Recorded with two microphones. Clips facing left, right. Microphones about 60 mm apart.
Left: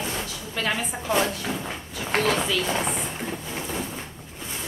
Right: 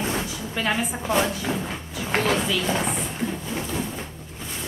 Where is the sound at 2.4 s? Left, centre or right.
Centre.